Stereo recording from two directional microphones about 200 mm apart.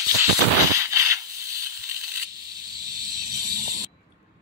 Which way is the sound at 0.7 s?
15° right (ahead or behind).